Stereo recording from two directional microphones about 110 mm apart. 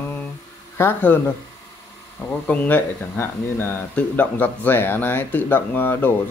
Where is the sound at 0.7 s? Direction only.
20° left (ahead or behind).